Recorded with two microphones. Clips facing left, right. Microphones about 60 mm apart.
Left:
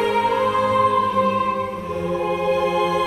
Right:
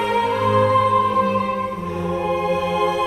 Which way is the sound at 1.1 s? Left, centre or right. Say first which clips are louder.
Even; right.